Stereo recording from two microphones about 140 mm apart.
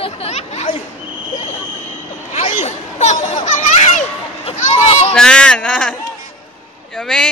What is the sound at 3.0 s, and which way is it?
A child's voice, 60° left (ahead or behind).